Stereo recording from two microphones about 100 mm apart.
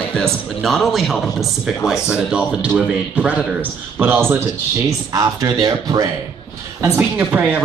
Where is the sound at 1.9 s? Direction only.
30° left (ahead or behind).